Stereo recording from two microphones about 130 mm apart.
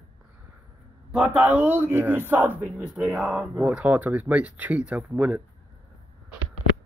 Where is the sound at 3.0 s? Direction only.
Centre (ahead or behind).